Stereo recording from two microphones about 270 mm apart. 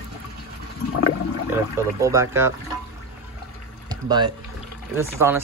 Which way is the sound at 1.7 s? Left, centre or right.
Centre.